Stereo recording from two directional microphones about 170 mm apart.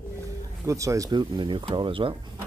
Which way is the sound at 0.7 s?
20° right (ahead or behind).